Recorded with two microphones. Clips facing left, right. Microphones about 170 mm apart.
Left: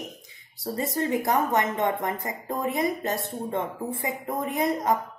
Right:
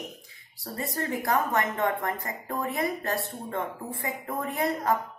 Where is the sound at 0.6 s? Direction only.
20° left (ahead or behind).